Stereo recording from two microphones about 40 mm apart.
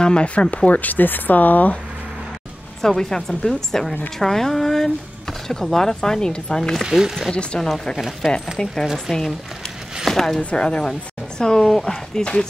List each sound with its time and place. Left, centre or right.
0.0 s speech: left
0.7 s speech: left
2.8 s speech: centre
6.9 s speech: centre
7.5 s speech: centre
8.2 s speech: centre
10.0 s speech: centre
10.5 s speech: left